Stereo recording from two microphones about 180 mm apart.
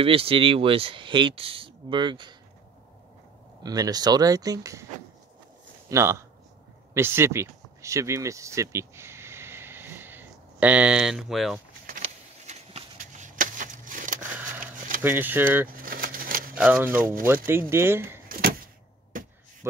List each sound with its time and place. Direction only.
0.0 s speech: 30° right (ahead or behind)
3.6 s speech: 20° right (ahead or behind)
5.9 s speech: 15° right (ahead or behind)
12.4 s a sound: 40° right (ahead or behind)
15.0 s speech: 10° right (ahead or behind)
15.8 s a sound: 50° right (ahead or behind)
16.5 s speech: 10° right (ahead or behind)
17.0 s speech: 50° right (ahead or behind)
17.5 s speech: 15° right (ahead or behind)
19.1 s a sound: 50° right (ahead or behind)